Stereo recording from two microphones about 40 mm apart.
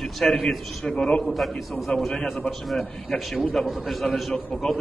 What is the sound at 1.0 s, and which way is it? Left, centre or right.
Speech, left.